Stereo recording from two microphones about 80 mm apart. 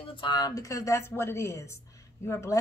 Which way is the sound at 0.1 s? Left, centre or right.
Left.